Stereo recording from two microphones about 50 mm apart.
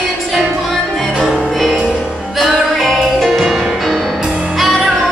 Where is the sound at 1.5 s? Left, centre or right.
Centre.